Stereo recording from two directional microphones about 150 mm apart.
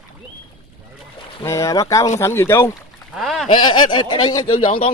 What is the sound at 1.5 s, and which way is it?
Speech, 20° left (ahead or behind).